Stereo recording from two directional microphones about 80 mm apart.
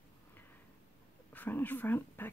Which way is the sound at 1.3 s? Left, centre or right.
Left.